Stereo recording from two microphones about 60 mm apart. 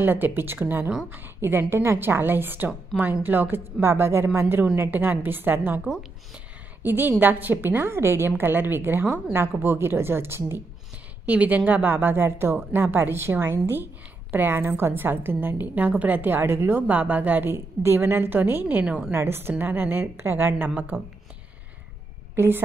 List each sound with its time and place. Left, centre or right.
0.0 s a woman's voice: right
2.9 s speech: centre
3.3 s a woman's voice: right
6.8 s a woman's voice: right
8.4 s a woman's voice: right
11.2 s a woman's voice: right
16.8 s a woman's voice: right
19.1 s a woman's voice: right
22.3 s a woman's voice: right